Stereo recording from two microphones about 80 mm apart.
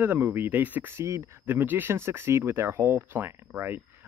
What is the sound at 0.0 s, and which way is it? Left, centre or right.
A man's voice, right.